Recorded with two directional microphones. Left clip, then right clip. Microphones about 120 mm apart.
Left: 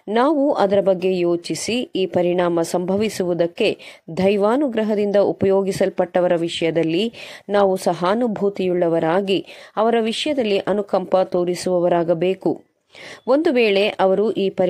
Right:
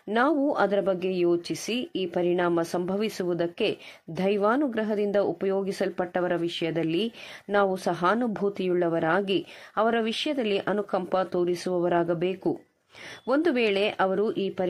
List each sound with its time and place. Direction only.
0.1 s speech: 35° left (ahead or behind)